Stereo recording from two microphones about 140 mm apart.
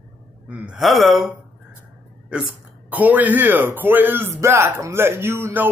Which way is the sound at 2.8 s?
10° right (ahead or behind).